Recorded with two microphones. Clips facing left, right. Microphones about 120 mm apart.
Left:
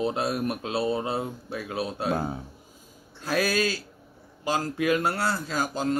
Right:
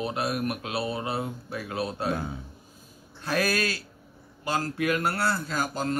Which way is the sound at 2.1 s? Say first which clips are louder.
Left 4 dB; 40° left (ahead or behind).